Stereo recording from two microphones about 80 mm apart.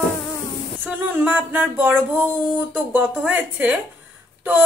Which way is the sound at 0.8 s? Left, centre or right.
Right.